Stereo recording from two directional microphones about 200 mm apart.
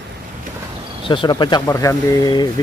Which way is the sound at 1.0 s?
25° left (ahead or behind).